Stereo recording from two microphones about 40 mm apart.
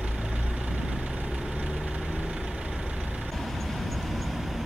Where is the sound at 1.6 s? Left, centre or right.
Right.